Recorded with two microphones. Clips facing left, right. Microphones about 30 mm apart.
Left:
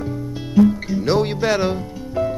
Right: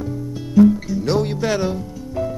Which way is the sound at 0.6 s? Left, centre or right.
Left.